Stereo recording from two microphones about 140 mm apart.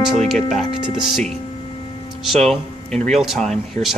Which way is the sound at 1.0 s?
5° right (ahead or behind).